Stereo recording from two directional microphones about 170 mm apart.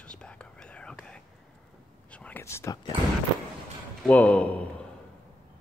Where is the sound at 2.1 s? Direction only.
10° left (ahead or behind).